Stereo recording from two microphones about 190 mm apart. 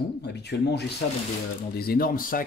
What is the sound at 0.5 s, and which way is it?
Speech, 60° left (ahead or behind).